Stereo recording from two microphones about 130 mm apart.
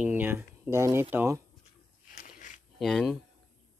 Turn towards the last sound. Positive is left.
turn(degrees=0)  # may be behind; listen again after turning